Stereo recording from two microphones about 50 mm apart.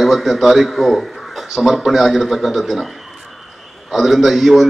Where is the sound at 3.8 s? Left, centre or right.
Centre.